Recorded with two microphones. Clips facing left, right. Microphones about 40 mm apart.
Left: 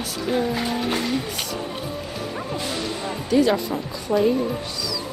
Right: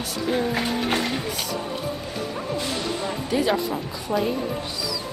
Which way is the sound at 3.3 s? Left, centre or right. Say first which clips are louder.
Left 4 dB; centre.